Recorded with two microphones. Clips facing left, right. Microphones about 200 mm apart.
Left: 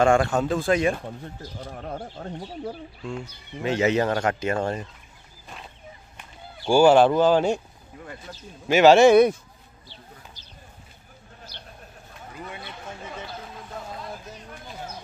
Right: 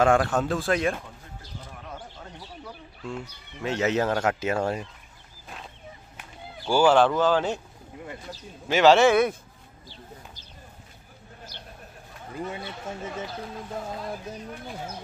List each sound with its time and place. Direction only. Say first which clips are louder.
0.0 s speech: left 2 dB; centre (ahead or behind)
1.6 s speech: left 8 dB; 55° left (ahead or behind)
3.1 s speech: left 1 dB; centre (ahead or behind)
6.7 s speech: left 4 dB; 10° left (ahead or behind)
8.6 s speech: left 3 dB; 10° left (ahead or behind)
11.5 s vehicle: even; 45° right (ahead or behind)